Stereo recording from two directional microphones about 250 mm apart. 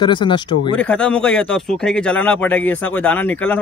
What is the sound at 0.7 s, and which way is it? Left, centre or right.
A man's voice, centre.